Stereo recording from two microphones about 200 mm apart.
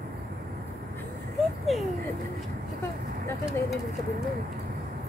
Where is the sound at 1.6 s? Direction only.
Centre (ahead or behind).